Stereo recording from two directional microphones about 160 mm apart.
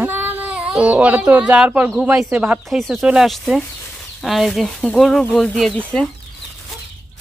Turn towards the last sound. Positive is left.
turn(degrees=5)  # may be behind; listen again after turning